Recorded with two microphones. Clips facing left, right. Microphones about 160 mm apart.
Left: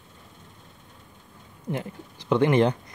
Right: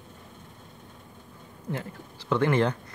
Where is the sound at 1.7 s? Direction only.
20° left (ahead or behind).